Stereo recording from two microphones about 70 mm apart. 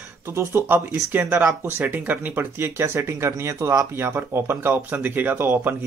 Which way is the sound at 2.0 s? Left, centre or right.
Right.